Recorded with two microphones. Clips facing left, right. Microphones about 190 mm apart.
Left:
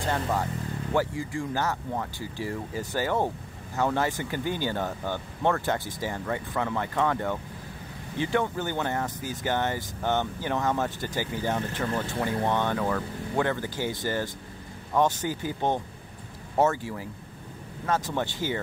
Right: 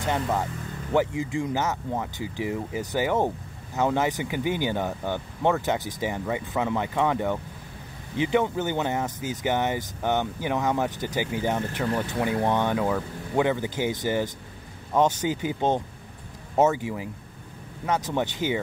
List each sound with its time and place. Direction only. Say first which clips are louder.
0.9 s speech: right 4 dB; 20° right (ahead or behind)